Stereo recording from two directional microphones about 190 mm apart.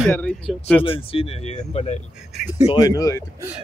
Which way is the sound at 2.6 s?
20° left (ahead or behind).